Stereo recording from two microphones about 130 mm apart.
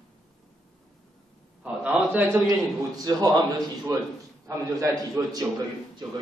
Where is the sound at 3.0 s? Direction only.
30° right (ahead or behind).